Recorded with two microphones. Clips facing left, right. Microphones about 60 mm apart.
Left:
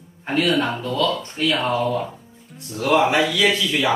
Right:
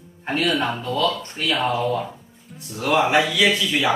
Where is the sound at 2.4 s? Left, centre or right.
Centre.